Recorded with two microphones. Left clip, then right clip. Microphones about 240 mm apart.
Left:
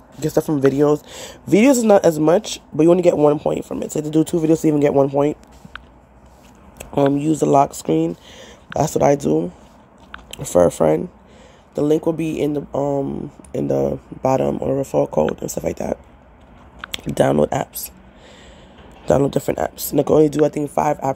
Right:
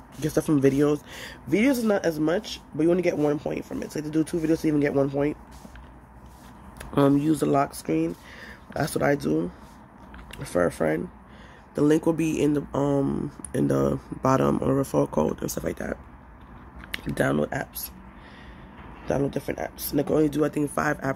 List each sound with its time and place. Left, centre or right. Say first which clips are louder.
0.2 s speech: left 5 dB; centre
1.0 s speech: left 5 dB; centre
4.9 s speech: left 9 dB; centre
6.9 s speech: left 4 dB; centre
7.2 s speech: left 8 dB; centre
10.7 s speech: left 9 dB; left
11.7 s speech: left 4 dB; centre
17.0 s speech: left 9 dB; centre
19.2 s speech: left 9 dB; left; by 21.0 s centre